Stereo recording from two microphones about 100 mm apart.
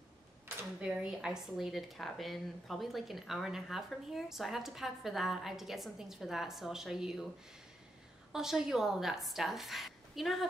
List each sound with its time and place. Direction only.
0.7 s a woman's voice: 10° right (ahead or behind)
8.3 s a woman's voice: 5° right (ahead or behind)